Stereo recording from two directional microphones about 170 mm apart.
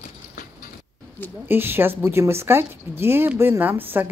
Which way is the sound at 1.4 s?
15° right (ahead or behind).